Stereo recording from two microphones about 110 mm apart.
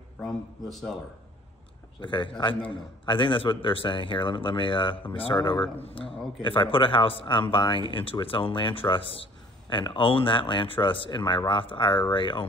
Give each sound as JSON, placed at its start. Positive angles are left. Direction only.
{"t": 0.2, "sound": "a man's voice", "side_deg": 5}
{"t": 2.0, "sound": "a man's voice", "side_deg": 45}
{"t": 5.9, "sound": "a man's voice", "side_deg": 55}